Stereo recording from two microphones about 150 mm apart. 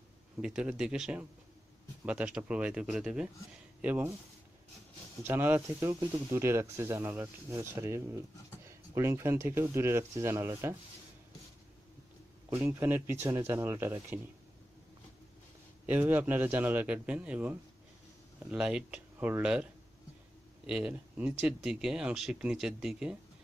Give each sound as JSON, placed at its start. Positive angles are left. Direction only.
{"t": 0.4, "sound": "speech", "side_deg": -5}
{"t": 5.2, "sound": "speech", "side_deg": -15}
{"t": 12.4, "sound": "speech", "side_deg": -15}
{"t": 15.9, "sound": "speech", "side_deg": -15}